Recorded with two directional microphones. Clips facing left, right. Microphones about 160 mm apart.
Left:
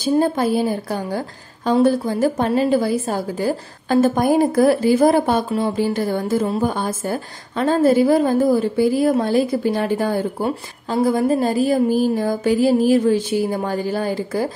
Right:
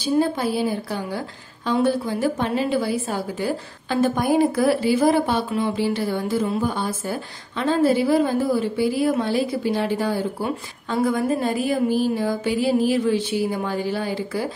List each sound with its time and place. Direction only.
0.0 s speech: 45° left (ahead or behind)